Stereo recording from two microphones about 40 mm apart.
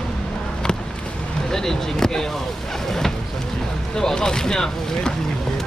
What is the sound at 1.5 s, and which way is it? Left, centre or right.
Speech, centre.